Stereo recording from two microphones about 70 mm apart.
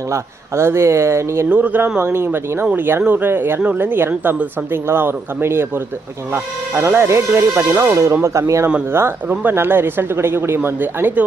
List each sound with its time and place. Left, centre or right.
0.1 s speech: right
1.5 s speech: right
9.3 s speech: right